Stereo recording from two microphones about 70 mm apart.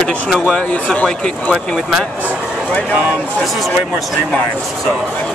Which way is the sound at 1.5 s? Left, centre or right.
Centre.